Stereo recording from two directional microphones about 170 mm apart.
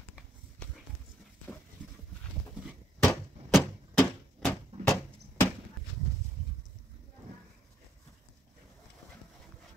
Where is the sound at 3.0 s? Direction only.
5° left (ahead or behind).